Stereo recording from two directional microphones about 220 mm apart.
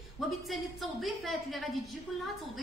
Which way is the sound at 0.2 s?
Centre (ahead or behind).